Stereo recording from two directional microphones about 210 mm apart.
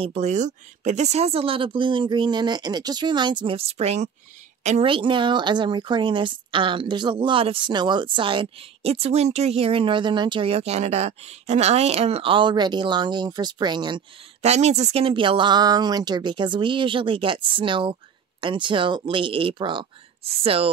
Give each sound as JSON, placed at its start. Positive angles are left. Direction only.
{"t": 0.0, "sound": "a woman's voice", "side_deg": -30}